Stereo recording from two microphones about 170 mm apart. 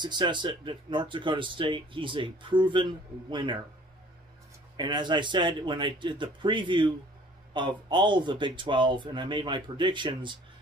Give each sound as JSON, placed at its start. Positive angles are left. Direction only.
{"t": 0.0, "sound": "speech", "side_deg": -25}
{"t": 4.7, "sound": "speech", "side_deg": -25}